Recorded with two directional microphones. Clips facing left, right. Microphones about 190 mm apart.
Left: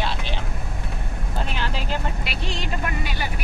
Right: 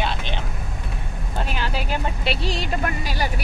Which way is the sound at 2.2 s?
30° right (ahead or behind).